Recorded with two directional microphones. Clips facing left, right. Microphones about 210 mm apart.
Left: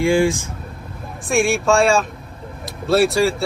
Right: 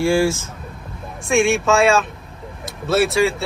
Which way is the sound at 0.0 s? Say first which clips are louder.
Left 1 dB; 15° left (ahead or behind).